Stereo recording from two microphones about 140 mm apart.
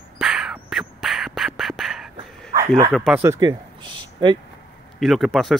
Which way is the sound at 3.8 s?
35° right (ahead or behind).